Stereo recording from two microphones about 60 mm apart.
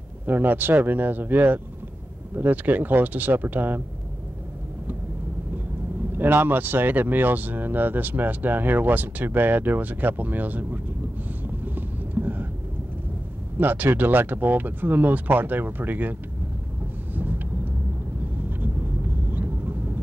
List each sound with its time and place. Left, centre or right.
0.3 s speech: right
6.1 s speech: right
11.4 s vehicle: right
13.6 s speech: right
17.1 s vehicle: right
19.3 s vehicle: right